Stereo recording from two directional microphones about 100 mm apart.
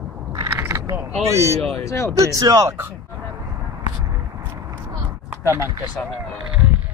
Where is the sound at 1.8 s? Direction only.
30° left (ahead or behind).